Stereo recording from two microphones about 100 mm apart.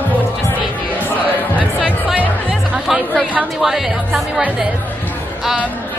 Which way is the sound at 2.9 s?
Centre (ahead or behind).